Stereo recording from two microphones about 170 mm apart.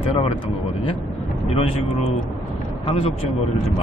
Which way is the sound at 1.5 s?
35° left (ahead or behind).